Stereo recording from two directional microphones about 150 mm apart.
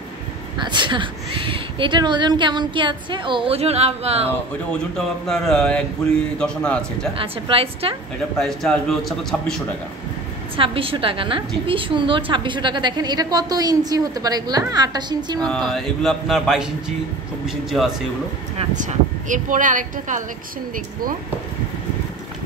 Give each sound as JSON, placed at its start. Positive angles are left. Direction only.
{"t": 0.7, "sound": "speech", "side_deg": -30}
{"t": 4.9, "sound": "speech", "side_deg": 0}
{"t": 7.2, "sound": "speech", "side_deg": -40}
{"t": 8.4, "sound": "speech", "side_deg": 5}
{"t": 10.5, "sound": "a woman's voice", "side_deg": -35}
{"t": 15.4, "sound": "speech", "side_deg": 5}
{"t": 18.8, "sound": "speech", "side_deg": -55}